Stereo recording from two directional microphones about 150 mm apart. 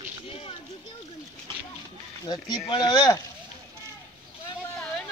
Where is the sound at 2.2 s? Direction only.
30° left (ahead or behind).